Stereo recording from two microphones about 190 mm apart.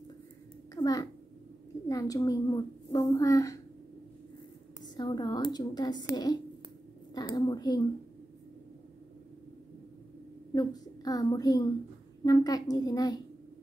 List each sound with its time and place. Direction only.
0.7 s a child's voice: 20° left (ahead or behind)
4.8 s speech: 20° left (ahead or behind)
10.5 s speech: 20° left (ahead or behind)